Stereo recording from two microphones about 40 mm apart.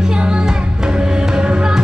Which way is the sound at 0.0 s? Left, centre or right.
Centre.